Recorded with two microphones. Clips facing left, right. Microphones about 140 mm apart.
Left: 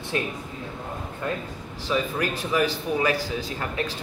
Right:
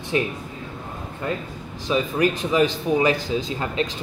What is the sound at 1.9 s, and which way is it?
A man's voice, 20° right (ahead or behind).